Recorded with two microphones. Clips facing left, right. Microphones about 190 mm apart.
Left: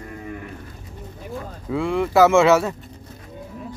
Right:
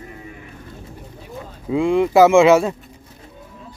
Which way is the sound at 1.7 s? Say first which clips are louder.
Right 5 dB; 20° right (ahead or behind).